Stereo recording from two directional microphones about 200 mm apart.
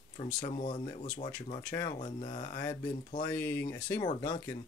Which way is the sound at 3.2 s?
10° left (ahead or behind).